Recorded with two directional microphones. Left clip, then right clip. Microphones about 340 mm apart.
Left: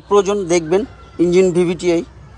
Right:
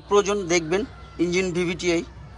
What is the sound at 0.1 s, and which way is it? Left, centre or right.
Speech, centre.